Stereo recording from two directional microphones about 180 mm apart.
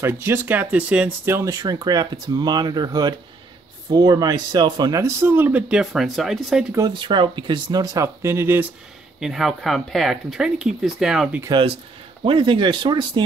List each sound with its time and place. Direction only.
0.0 s speech: 15° right (ahead or behind)
6.7 s speech: 25° right (ahead or behind); by 11.4 s 5° right (ahead or behind)
11.4 s speech: 25° right (ahead or behind)